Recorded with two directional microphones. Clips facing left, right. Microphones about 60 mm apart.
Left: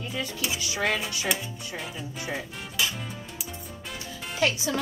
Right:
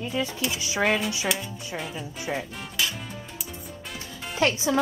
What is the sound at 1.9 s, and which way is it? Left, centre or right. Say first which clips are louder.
Speech: right 2 dB; centre.